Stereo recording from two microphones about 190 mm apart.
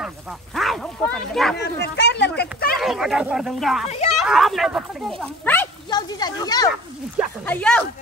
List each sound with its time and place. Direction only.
0.6 s speech: centre (ahead or behind)
1.6 s speech: 65° left (ahead or behind)
2.8 s speech: centre (ahead or behind)
5.9 s speech: 20° left (ahead or behind)
7.4 s speech: 5° left (ahead or behind)